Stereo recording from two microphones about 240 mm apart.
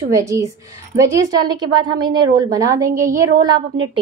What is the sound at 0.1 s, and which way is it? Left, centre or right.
A woman's voice, centre.